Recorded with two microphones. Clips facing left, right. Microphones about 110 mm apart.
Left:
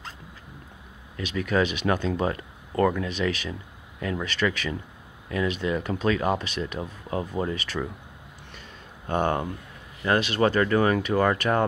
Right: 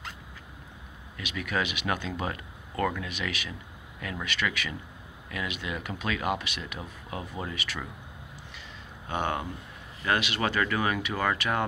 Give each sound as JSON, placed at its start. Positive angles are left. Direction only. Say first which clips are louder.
{"t": 1.1, "sound": "speech", "louder": "left 7 dB", "side_deg": 35}
{"t": 9.1, "sound": "speech", "louder": "left 5 dB", "side_deg": 45}